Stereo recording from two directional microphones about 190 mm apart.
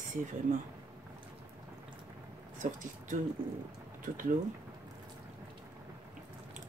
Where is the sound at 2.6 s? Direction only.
45° right (ahead or behind).